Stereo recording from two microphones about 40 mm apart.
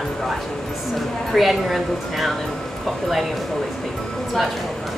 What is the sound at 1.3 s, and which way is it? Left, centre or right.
Speech, centre.